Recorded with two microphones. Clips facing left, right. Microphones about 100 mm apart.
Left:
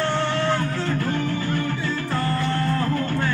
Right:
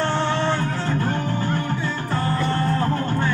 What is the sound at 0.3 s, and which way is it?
Music, 25° right (ahead or behind).